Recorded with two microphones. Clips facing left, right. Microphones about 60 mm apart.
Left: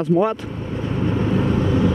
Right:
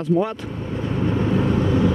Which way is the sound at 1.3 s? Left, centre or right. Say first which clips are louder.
Even; left.